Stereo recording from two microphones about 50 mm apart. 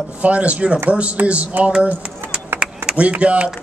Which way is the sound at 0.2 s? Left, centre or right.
Right.